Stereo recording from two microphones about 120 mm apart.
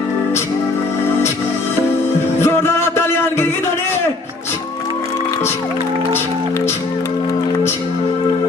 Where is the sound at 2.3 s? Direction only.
20° left (ahead or behind).